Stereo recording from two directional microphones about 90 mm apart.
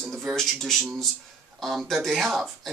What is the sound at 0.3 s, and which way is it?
Speech, centre (ahead or behind).